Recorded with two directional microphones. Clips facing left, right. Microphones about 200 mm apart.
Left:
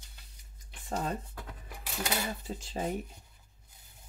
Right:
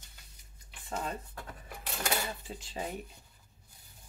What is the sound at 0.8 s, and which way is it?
Speech, 40° left (ahead or behind).